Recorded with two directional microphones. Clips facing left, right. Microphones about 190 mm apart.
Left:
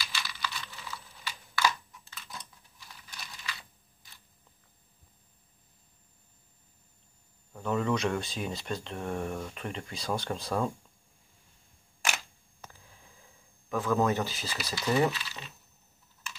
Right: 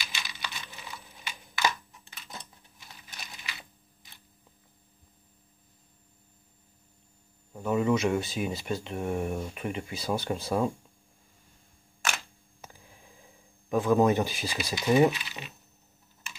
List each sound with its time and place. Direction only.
0.0 s computer keyboard: 20° right (ahead or behind)
7.5 s speech: 10° right (ahead or behind)
12.6 s a sound: 10° right (ahead or behind)
13.7 s speech: 15° right (ahead or behind)